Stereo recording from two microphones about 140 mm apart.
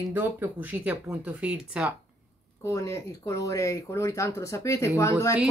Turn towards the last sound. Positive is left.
turn(degrees=20)  # may be behind; listen again after turning